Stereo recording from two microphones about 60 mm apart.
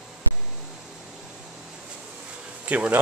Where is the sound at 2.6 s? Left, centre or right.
Right.